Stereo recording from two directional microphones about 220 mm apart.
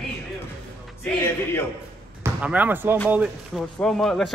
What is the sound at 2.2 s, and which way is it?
Speech, 5° right (ahead or behind).